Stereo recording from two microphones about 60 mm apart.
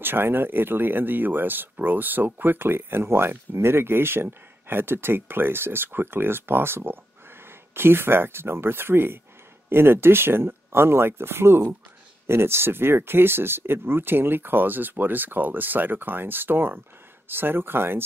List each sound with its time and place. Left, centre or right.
0.0 s speech: right